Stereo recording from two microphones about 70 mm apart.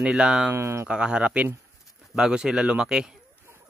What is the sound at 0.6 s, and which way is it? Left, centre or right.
Speech, right.